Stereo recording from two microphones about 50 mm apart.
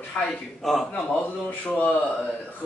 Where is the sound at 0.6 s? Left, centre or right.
Centre.